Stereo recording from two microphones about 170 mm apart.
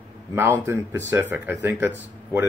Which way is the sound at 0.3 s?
15° right (ahead or behind).